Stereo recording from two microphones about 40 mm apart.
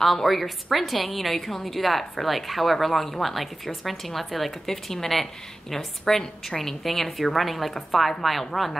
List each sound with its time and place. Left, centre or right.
0.0 s a woman's voice: centre